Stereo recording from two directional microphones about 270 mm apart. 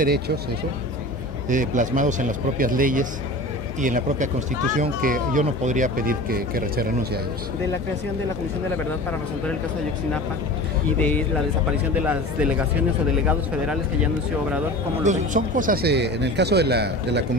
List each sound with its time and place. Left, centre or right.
1.5 s a man's voice: right
11.0 s speech: centre
12.1 s speech: centre
15.0 s speech: right